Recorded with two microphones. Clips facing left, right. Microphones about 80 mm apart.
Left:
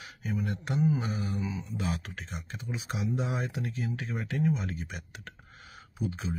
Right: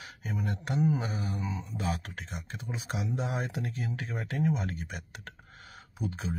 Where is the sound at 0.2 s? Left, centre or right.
Right.